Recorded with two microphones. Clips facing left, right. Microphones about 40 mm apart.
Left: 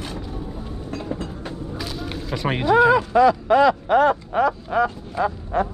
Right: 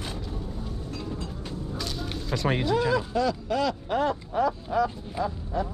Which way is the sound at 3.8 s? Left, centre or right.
Left.